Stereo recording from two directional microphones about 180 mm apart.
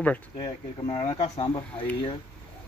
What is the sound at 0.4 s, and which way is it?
Speech, 20° left (ahead or behind).